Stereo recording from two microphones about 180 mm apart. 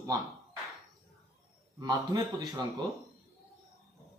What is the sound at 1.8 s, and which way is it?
Speech, 20° right (ahead or behind).